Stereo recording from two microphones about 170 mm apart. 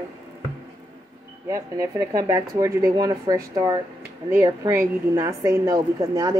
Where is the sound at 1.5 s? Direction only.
20° right (ahead or behind).